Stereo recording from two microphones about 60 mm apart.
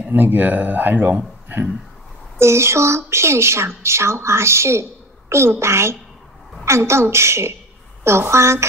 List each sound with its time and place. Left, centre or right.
0.1 s speech: right
2.3 s speech: right